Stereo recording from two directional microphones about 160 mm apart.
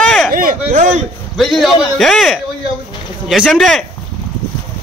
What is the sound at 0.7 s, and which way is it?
Speech, 50° right (ahead or behind).